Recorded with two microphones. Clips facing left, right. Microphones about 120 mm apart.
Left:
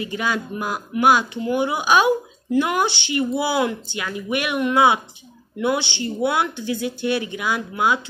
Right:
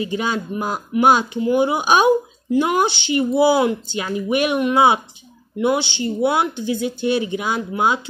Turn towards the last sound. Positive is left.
turn(degrees=-25)  # may be behind; listen again after turning